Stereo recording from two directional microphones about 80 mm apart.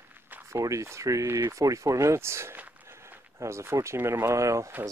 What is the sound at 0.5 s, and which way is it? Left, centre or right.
Speech, right.